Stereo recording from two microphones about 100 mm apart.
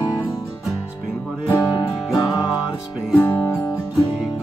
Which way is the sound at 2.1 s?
35° left (ahead or behind).